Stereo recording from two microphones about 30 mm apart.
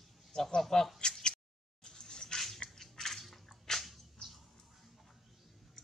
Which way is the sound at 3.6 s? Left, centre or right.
Centre.